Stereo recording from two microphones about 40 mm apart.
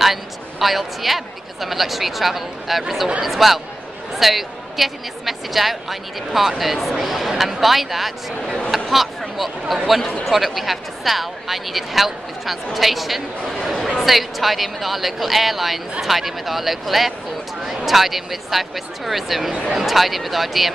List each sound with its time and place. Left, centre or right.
0.0 s speech: centre
9.2 s a sound: centre
9.8 s speech: centre